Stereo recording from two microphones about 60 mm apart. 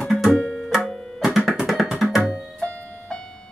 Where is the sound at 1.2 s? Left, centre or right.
Centre.